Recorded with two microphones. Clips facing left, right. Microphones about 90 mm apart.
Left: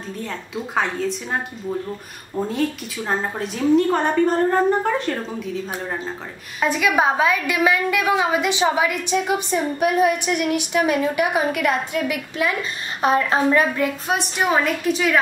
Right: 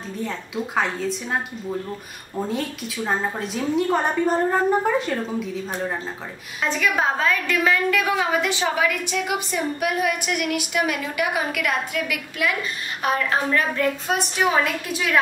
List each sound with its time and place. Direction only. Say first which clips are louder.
0.2 s a woman's voice: right 3 dB; centre (ahead or behind)
6.6 s a woman's voice: left 3 dB; 10° left (ahead or behind)
14.1 s a woman's voice: left 2 dB; 5° left (ahead or behind)